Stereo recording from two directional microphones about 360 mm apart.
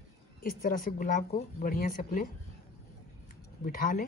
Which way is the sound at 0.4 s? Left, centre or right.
Left.